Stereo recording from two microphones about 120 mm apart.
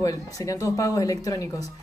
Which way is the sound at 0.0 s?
30° left (ahead or behind).